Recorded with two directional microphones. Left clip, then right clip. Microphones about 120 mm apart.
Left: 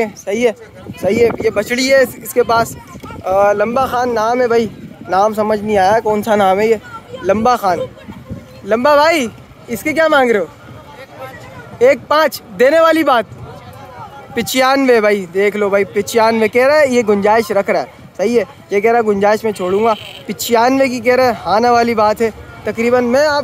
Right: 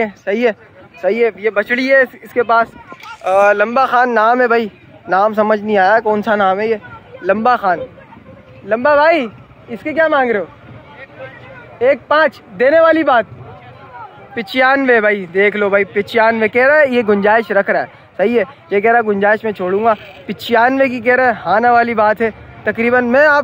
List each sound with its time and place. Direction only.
0.0 s speech: 20° left (ahead or behind)
3.3 s speech: 10° left (ahead or behind)
3.6 s speech: 5° right (ahead or behind)
4.6 s speech: 20° left (ahead or behind)
5.3 s speech: 10° left (ahead or behind); by 7.8 s 30° left (ahead or behind)
8.6 s speech: 60° left (ahead or behind)
11.8 s speech: 60° left (ahead or behind)
14.3 s speech: 50° left (ahead or behind)
14.6 s speech: 30° left (ahead or behind); by 23.3 s 15° left (ahead or behind)